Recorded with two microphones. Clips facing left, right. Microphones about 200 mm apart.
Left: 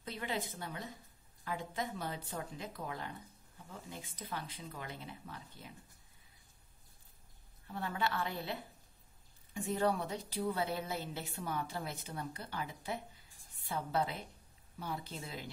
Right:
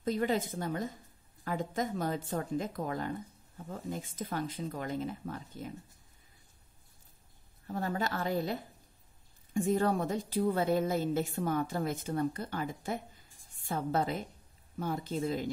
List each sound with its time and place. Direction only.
0.0 s speech: 45° right (ahead or behind)
7.6 s a woman's voice: 40° right (ahead or behind)